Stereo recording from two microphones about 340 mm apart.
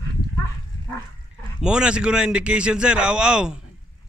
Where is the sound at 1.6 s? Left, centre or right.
Centre.